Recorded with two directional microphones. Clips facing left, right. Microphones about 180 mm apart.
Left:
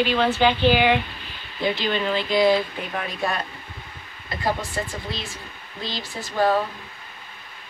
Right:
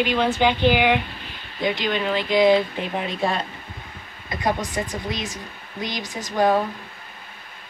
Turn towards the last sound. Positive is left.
turn(degrees=-15)  # may be behind; listen again after turning